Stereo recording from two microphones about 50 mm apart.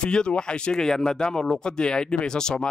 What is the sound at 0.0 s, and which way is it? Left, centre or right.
A man's voice, centre.